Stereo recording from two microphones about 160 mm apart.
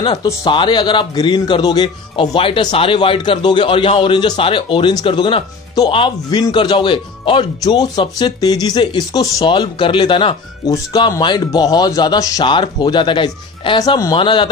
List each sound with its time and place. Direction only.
0.0 s a man's voice: 25° left (ahead or behind)